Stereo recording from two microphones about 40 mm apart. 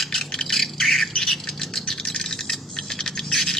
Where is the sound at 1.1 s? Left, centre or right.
Centre.